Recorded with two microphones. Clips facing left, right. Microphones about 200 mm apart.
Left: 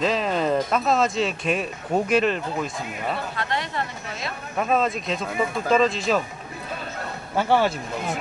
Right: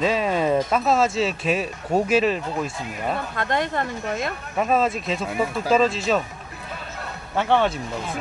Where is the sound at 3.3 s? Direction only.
50° right (ahead or behind).